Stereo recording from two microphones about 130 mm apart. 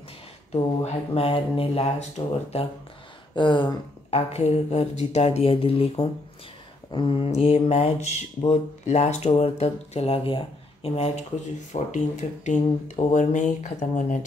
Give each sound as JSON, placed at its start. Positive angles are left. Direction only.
{"t": 0.8, "sound": "speech", "side_deg": 50}
{"t": 3.3, "sound": "speech", "side_deg": 35}
{"t": 4.1, "sound": "speech", "side_deg": 55}
{"t": 11.7, "sound": "speech", "side_deg": 70}
{"t": 12.6, "sound": "speech", "side_deg": 50}
{"t": 13.1, "sound": "speech", "side_deg": 70}